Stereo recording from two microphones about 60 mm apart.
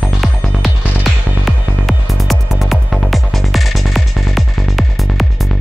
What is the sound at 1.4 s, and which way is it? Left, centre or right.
Music, centre.